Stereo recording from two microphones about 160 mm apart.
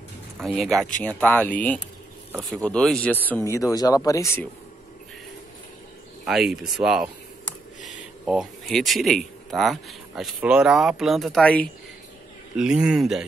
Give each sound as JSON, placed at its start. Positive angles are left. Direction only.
{"t": 0.4, "sound": "speech", "side_deg": 0}
{"t": 6.2, "sound": "speech", "side_deg": -5}
{"t": 8.3, "sound": "speech", "side_deg": -5}
{"t": 12.5, "sound": "speech", "side_deg": -5}